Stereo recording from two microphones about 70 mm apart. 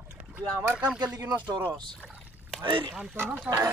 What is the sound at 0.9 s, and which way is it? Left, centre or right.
Speech, right.